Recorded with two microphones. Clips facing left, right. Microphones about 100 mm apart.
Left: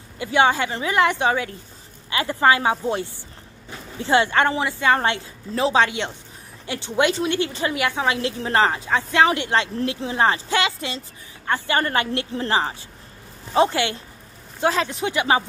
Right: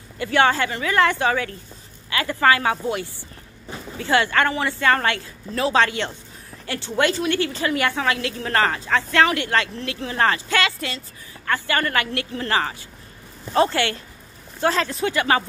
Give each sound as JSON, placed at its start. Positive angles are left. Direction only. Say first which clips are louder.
{"t": 0.2, "sound": "a woman's voice", "louder": "even", "side_deg": 15}
{"t": 4.0, "sound": "a woman's voice", "louder": "left 1 dB", "side_deg": 20}
{"t": 13.5, "sound": "a woman's voice", "louder": "even", "side_deg": 15}